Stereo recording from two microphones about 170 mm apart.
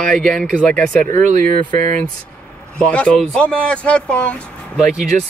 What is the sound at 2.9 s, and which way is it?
Speech, 5° left (ahead or behind).